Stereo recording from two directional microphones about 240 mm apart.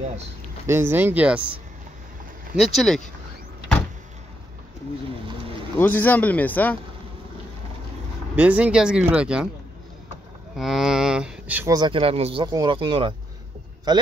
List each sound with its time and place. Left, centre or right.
0.7 s speech: centre
2.5 s speech: centre
5.8 s speech: centre
8.4 s speech: centre
10.6 s speech: centre